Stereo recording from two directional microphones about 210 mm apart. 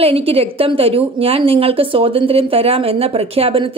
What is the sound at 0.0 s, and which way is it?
A woman's voice, 25° right (ahead or behind).